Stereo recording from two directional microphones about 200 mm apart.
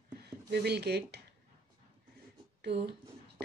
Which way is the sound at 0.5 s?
55° right (ahead or behind).